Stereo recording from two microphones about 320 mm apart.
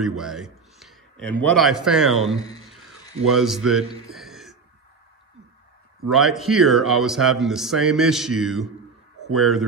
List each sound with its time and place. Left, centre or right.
0.0 s a man's voice: centre
4.1 s a sound: centre
6.0 s a man's voice: centre